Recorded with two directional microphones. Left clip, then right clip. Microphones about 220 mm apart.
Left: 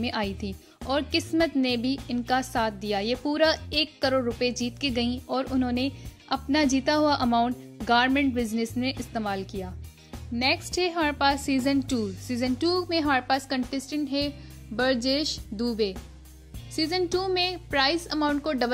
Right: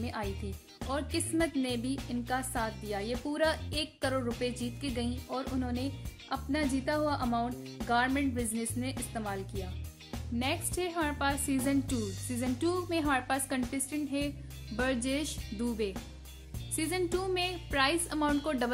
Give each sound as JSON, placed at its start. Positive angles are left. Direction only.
{"t": 0.0, "sound": "a woman's voice", "side_deg": 35}
{"t": 10.4, "sound": "speech", "side_deg": 25}